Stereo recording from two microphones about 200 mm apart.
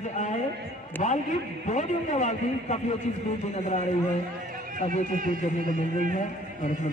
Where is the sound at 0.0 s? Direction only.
35° left (ahead or behind).